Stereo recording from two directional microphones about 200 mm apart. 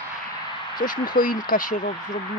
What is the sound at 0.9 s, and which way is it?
Speech, 45° left (ahead or behind).